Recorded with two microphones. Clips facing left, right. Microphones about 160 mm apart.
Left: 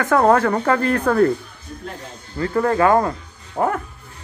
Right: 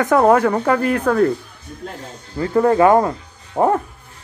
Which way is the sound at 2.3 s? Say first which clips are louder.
Right 4 dB; 15° right (ahead or behind).